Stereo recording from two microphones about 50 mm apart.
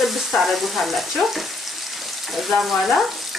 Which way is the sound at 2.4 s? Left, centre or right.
Centre.